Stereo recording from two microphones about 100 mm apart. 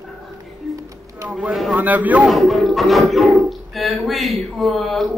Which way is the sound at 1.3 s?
Centre (ahead or behind).